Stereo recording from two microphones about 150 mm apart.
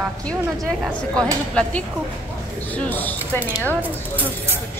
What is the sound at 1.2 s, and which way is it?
Speech, 5° left (ahead or behind).